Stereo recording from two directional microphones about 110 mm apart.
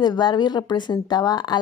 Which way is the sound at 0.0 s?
40° left (ahead or behind).